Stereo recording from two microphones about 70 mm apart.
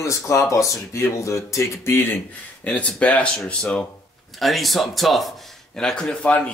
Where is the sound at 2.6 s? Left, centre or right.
Centre.